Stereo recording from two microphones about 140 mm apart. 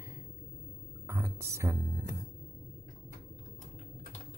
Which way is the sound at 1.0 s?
20° right (ahead or behind).